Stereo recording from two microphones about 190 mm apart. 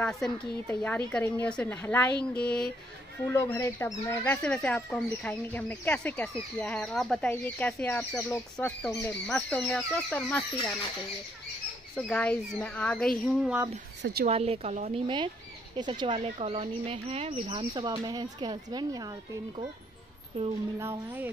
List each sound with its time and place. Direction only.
0.0 s speech: 5° left (ahead or behind)
11.9 s speech: 5° left (ahead or behind)
13.3 s speech: 5° right (ahead or behind)
14.2 s a woman's voice: 35° right (ahead or behind)
20.4 s a woman's voice: 35° right (ahead or behind)
20.8 s speech: 10° right (ahead or behind)